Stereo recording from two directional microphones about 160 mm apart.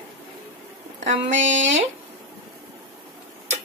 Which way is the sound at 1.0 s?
50° right (ahead or behind).